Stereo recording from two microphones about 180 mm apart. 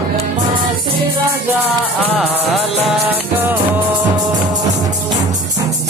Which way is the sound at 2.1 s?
Centre (ahead or behind).